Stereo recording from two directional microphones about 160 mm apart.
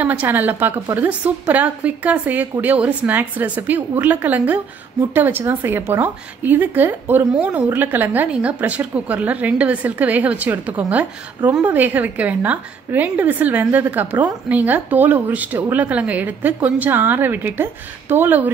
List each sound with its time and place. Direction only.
0.0 s a woman's voice: 10° right (ahead or behind)